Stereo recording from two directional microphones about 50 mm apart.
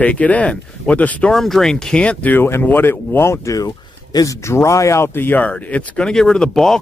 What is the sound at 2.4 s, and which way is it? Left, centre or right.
Speech, left.